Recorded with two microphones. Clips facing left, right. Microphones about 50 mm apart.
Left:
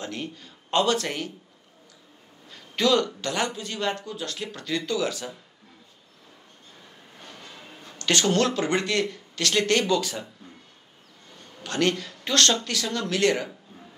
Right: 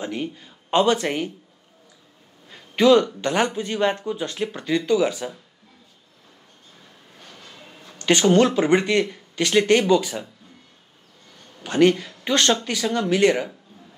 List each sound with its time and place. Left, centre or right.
0.0 s speech: centre
2.5 s a sound: centre
3.2 s speech: right
7.2 s train: centre
8.0 s speech: centre
11.6 s speech: centre